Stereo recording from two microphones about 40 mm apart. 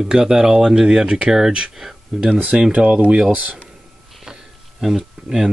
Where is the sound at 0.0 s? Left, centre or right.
Centre.